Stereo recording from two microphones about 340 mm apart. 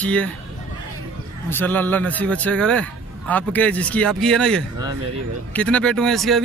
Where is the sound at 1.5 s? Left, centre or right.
Centre.